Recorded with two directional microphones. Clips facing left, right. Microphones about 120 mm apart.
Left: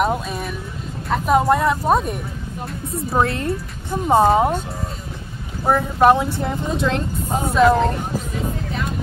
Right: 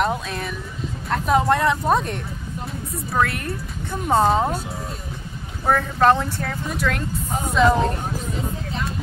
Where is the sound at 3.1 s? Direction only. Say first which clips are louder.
Left 3 dB; 25° left (ahead or behind).